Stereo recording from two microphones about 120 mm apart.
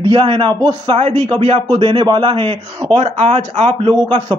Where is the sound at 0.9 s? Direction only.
55° right (ahead or behind).